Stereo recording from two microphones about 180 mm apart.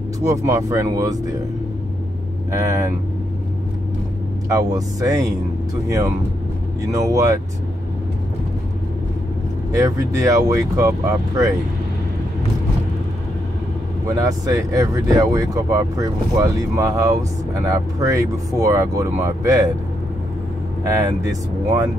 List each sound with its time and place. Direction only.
0.2 s speech: 20° right (ahead or behind)
2.5 s speech: 15° right (ahead or behind)
4.6 s speech: 20° right (ahead or behind)
6.9 s speech: 20° right (ahead or behind)
9.8 s speech: 20° right (ahead or behind)
14.0 s speech: 20° right (ahead or behind)
21.3 s speech: 20° right (ahead or behind)